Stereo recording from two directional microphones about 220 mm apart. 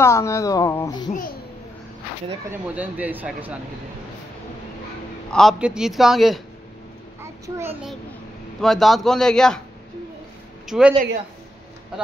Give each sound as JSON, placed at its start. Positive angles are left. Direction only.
{"t": 0.0, "sound": "speech", "side_deg": 15}
{"t": 1.1, "sound": "a child's voice", "side_deg": 40}
{"t": 2.7, "sound": "speech", "side_deg": -5}
{"t": 5.3, "sound": "a man's voice", "side_deg": 0}
{"t": 7.2, "sound": "a sound", "side_deg": -10}
{"t": 8.5, "sound": "a man's voice", "side_deg": 0}
{"t": 10.7, "sound": "a man's voice", "side_deg": -5}